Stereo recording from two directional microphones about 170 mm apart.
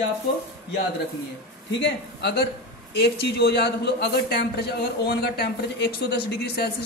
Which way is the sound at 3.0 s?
70° left (ahead or behind).